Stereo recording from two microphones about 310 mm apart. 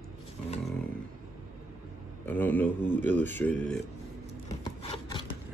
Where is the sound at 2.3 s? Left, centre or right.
Centre.